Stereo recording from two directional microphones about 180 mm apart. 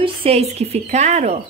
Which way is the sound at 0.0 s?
35° right (ahead or behind).